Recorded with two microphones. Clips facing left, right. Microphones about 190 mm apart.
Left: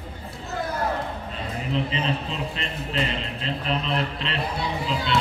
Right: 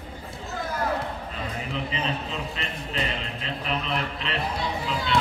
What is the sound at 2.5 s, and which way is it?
Speech, 35° left (ahead or behind).